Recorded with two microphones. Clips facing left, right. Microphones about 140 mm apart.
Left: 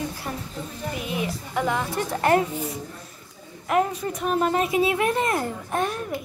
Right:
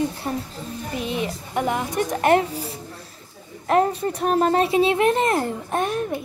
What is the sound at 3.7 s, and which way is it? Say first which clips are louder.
Speech: right 4 dB; 35° right (ahead or behind).